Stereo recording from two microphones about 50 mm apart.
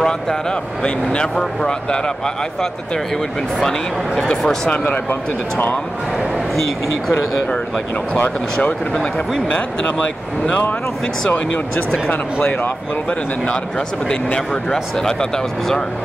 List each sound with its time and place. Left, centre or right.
0.0 s speech: centre
9.9 s speech: centre; by 12.4 s left
13.5 s speech: centre